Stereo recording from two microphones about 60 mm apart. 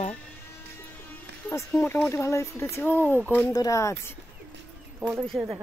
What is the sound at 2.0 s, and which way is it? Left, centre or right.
Speech, left.